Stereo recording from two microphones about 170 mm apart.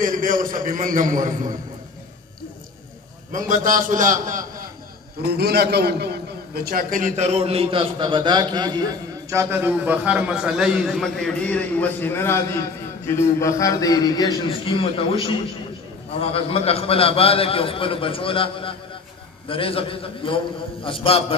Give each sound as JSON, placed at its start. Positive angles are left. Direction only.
{"t": 0.0, "sound": "a man's voice", "side_deg": -50}
{"t": 3.3, "sound": "a man's voice", "side_deg": -50}
{"t": 5.4, "sound": "a man's voice", "side_deg": -70}
{"t": 16.2, "sound": "a man's voice", "side_deg": 35}